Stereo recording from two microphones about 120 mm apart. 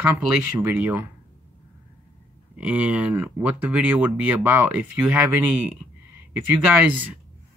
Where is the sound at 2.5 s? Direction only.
10° right (ahead or behind).